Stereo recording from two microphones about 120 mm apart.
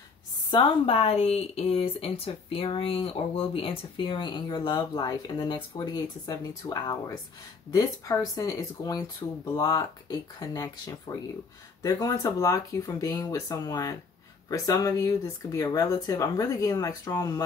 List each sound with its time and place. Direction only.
0.5 s speech: 50° left (ahead or behind); by 17.4 s 30° left (ahead or behind)